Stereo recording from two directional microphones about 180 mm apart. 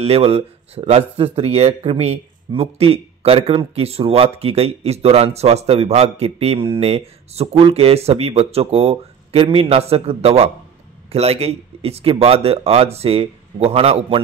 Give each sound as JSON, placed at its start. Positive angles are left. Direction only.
{"t": 0.0, "sound": "speech", "side_deg": -35}